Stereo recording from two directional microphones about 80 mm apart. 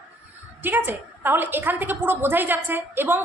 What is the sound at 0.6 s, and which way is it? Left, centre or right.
A woman's voice, right.